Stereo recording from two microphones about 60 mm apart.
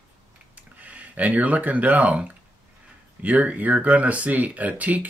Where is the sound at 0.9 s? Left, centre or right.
Right.